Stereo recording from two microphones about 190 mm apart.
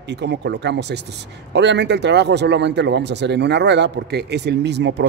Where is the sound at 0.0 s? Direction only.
65° right (ahead or behind).